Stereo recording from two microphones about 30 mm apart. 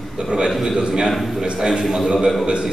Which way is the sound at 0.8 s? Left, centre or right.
Right.